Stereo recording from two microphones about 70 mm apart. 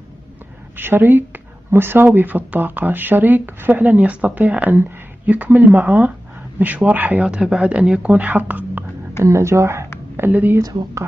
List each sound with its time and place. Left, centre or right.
0.7 s speech: right
3.8 s speech: centre
9.2 s a woman's voice: right
10.3 s speech: right